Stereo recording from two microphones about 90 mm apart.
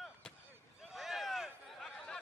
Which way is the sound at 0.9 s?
Centre (ahead or behind).